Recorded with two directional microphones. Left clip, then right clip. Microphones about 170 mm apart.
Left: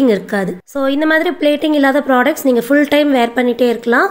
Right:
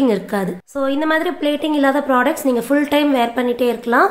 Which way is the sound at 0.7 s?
25° left (ahead or behind).